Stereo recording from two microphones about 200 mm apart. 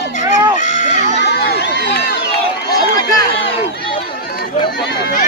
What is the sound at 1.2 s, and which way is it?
Crowd, 55° left (ahead or behind).